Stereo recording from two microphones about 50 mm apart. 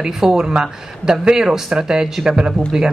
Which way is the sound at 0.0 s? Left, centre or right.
Centre.